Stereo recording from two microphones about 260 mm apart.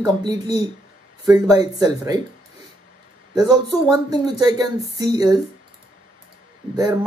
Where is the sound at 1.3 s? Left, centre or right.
Centre.